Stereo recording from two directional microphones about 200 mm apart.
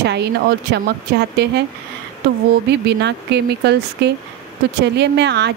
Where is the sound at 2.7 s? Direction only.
55° right (ahead or behind).